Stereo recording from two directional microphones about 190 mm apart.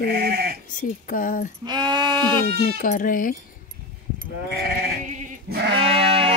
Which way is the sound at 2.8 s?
45° left (ahead or behind).